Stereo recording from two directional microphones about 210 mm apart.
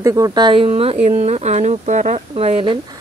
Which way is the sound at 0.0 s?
15° right (ahead or behind).